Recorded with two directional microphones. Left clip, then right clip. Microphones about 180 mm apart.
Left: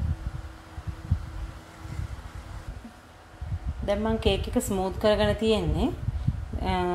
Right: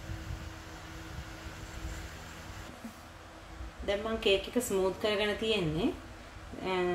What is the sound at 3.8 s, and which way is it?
A woman's voice, 55° left (ahead or behind).